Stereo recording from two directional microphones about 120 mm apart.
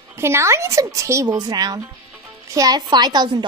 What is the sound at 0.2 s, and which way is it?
Child singing, 25° right (ahead or behind).